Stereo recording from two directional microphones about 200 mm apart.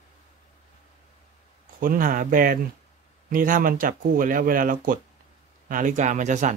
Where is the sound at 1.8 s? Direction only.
45° right (ahead or behind).